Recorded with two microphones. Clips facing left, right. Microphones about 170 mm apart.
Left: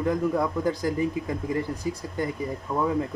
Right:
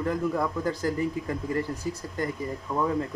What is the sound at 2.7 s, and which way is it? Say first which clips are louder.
Speech: left 1 dB; 20° left (ahead or behind).